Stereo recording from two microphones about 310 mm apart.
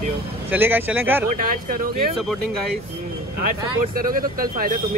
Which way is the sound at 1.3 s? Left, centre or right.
Right.